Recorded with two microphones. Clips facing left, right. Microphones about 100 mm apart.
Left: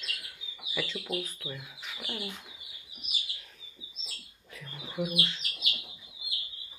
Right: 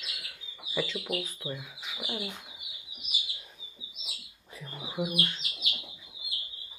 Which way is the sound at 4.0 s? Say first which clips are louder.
Right 2 dB; 10° right (ahead or behind).